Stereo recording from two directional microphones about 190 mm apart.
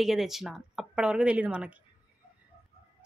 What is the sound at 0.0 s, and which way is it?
A woman's voice, centre (ahead or behind).